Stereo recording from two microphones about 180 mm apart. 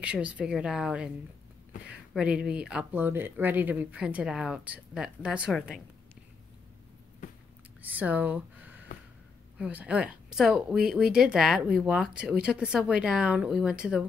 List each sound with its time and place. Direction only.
0.0 s speech: 5° right (ahead or behind)
7.2 s a sound: 45° left (ahead or behind)
7.8 s speech: 10° right (ahead or behind)